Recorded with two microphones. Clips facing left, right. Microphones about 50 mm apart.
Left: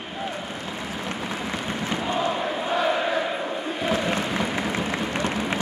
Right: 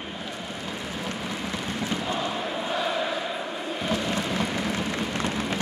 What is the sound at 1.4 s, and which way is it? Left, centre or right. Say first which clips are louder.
Chant: left 2 dB; centre.